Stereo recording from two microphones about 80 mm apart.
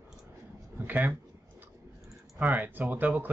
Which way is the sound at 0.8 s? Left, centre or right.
Right.